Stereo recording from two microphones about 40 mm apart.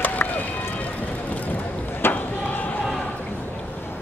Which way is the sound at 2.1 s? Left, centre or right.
Left.